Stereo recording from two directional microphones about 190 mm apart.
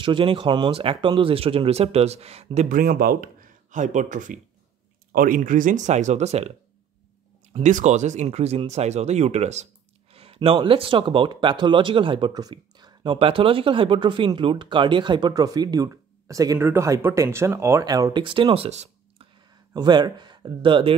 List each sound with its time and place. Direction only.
0.0 s speech: 25° right (ahead or behind)
7.5 s speech: 40° right (ahead or behind)
19.7 s speech: 20° right (ahead or behind)